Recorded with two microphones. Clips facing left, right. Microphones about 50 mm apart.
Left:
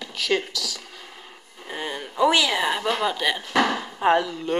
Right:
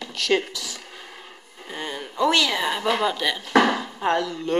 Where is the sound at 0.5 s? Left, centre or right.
Right.